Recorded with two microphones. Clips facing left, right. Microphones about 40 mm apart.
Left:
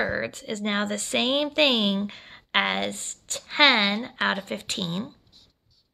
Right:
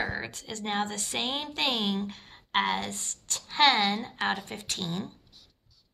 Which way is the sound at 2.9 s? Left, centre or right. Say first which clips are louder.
Left 2 dB; left.